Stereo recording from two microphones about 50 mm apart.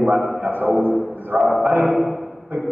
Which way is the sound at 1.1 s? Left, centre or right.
Right.